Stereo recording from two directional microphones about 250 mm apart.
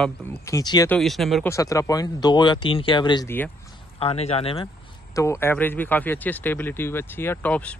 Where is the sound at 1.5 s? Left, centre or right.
Centre.